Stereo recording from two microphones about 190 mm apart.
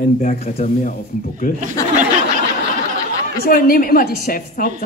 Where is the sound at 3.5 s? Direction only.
50° left (ahead or behind).